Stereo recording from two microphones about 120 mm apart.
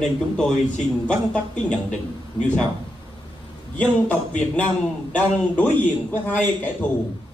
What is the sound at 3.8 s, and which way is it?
Speech, 10° left (ahead or behind).